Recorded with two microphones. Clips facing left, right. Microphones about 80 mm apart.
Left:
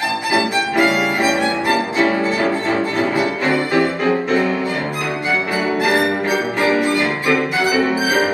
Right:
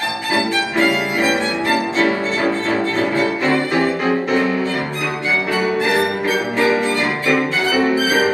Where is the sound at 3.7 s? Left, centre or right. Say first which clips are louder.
Left 1 dB; right.